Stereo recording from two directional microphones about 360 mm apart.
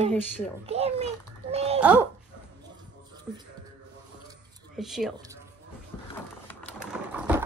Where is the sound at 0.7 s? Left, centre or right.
Centre.